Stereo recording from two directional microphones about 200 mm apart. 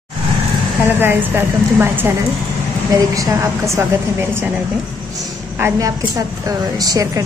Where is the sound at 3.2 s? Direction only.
15° right (ahead or behind).